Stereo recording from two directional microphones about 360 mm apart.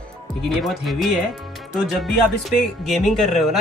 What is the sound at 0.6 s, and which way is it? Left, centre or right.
Speech, centre.